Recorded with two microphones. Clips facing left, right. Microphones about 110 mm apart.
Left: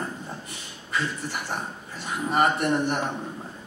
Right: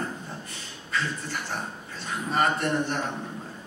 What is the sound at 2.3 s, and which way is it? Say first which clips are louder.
Speech: left 3 dB; 15° left (ahead or behind).